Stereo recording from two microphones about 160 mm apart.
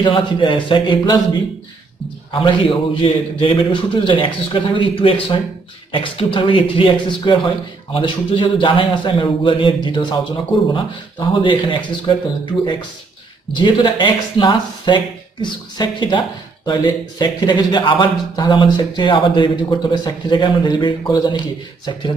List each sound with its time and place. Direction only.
0.0 s a man's voice: 30° left (ahead or behind)
2.4 s a man's voice: 35° left (ahead or behind)
13.5 s speech: 30° left (ahead or behind)